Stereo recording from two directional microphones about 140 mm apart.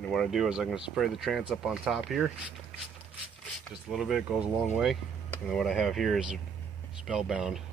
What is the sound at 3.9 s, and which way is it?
Speech, centre (ahead or behind).